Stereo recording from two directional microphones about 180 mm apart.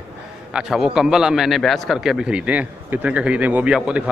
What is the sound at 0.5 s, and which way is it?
A man's voice, 5° right (ahead or behind).